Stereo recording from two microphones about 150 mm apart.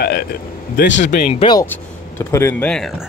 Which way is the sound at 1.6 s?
15° left (ahead or behind).